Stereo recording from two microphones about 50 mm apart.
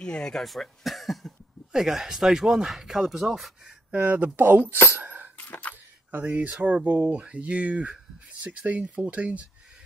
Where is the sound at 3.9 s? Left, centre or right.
Right.